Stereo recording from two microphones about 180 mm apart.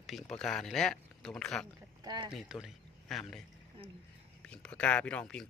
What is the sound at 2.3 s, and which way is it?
Speech, centre (ahead or behind).